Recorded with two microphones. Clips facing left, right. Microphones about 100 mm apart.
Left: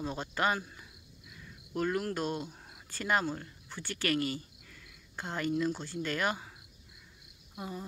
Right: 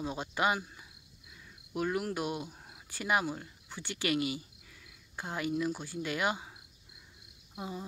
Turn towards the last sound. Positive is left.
turn(degrees=-15)  # may be behind; listen again after turning